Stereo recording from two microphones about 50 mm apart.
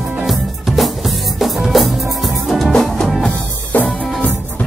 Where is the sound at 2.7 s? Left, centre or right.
Centre.